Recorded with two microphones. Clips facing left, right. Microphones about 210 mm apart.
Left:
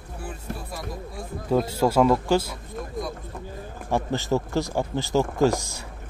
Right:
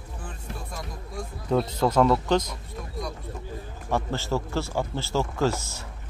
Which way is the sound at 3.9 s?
15° left (ahead or behind).